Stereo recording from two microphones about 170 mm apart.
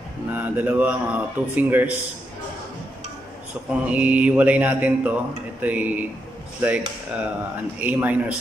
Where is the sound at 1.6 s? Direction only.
10° right (ahead or behind).